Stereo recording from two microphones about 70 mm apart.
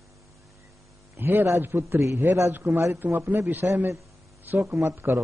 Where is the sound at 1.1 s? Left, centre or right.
Right.